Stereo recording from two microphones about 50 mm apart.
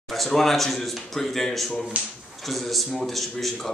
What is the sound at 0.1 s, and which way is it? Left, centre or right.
Speech, centre.